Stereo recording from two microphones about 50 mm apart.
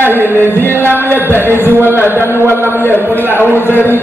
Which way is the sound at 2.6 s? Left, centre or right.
Left.